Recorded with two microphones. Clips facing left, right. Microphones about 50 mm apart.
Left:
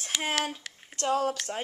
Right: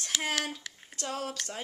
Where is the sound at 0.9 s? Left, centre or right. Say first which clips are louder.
Left 9 dB; left.